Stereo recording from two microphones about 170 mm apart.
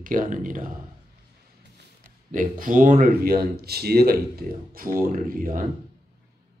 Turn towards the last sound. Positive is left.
turn(degrees=-55)  # may be behind; listen again after turning